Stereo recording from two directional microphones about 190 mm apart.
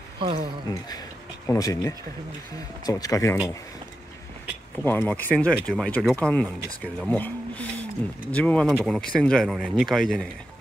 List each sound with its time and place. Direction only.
0.7 s speech: 20° left (ahead or behind)
4.8 s speech: 10° left (ahead or behind)